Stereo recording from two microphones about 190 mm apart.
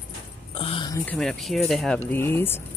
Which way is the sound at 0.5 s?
30° left (ahead or behind).